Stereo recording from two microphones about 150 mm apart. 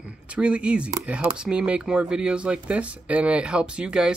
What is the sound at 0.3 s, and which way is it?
Speech, 5° right (ahead or behind).